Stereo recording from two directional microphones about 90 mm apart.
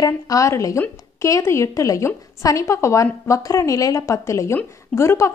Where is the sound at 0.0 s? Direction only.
40° left (ahead or behind).